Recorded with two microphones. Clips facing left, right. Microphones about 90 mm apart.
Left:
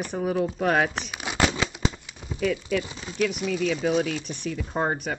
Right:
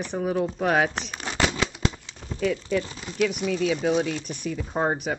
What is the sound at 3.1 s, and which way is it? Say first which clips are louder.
Speech: right 1 dB; centre (ahead or behind).